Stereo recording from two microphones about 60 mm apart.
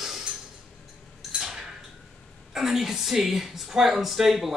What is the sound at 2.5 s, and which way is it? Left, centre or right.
A woman's voice, centre.